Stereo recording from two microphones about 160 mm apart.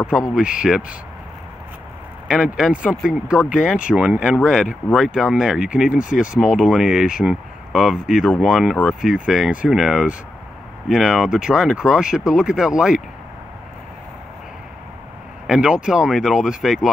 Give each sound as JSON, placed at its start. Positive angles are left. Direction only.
{"t": 0.3, "sound": "speech", "side_deg": -5}
{"t": 2.2, "sound": "speech", "side_deg": -5}
{"t": 5.9, "sound": "speech", "side_deg": 55}
{"t": 6.3, "sound": "speech", "side_deg": -5}
{"t": 15.4, "sound": "speech", "side_deg": -5}